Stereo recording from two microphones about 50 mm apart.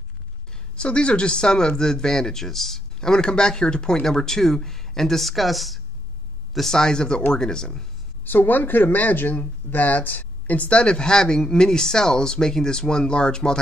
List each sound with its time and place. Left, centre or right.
0.7 s speech: left
8.2 s speech: left; by 13.6 s centre